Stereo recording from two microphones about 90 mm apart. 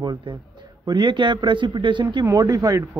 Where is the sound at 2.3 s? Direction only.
45° right (ahead or behind).